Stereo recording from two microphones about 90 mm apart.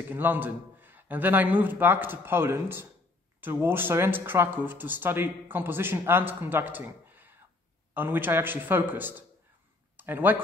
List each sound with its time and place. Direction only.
0.1 s speech: 20° right (ahead or behind)